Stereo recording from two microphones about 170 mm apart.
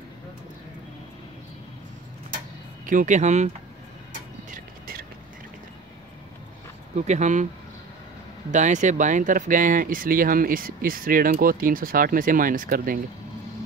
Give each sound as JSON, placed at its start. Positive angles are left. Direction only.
{"t": 2.9, "sound": "speech", "side_deg": -50}
{"t": 4.1, "sound": "vehicle", "side_deg": -55}
{"t": 7.0, "sound": "speech", "side_deg": -45}
{"t": 8.5, "sound": "speech", "side_deg": -45}